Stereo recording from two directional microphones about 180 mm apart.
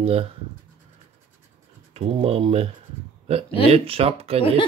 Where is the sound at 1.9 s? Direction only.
35° right (ahead or behind).